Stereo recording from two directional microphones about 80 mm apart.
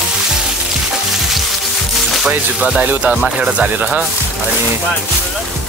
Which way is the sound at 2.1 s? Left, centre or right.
Centre.